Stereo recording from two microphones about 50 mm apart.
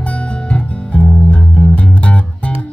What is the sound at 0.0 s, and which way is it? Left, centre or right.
Music, left.